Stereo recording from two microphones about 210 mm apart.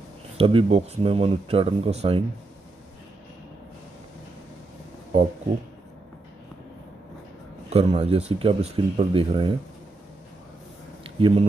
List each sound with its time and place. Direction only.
0.4 s speech: 25° right (ahead or behind)
7.7 s speech: 30° right (ahead or behind)
11.1 s speech: 25° right (ahead or behind)